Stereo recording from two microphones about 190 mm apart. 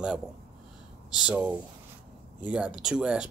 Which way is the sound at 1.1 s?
5° right (ahead or behind).